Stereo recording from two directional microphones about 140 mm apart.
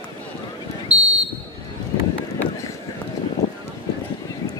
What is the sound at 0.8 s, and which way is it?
Basketball bounce, 10° right (ahead or behind).